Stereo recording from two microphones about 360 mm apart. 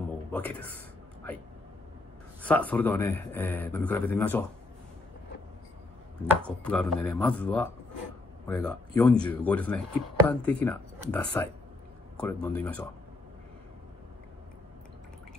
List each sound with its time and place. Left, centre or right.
0.3 s a man's voice: centre
2.4 s speech: centre
6.4 s speech: centre